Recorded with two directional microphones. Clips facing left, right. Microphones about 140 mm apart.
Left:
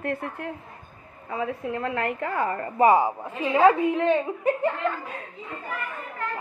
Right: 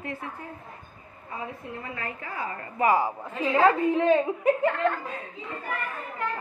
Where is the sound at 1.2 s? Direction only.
90° left; by 2.5 s 60° left (ahead or behind).